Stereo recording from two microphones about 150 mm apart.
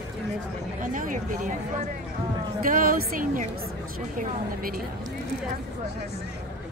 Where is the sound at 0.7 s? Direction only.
60° right (ahead or behind).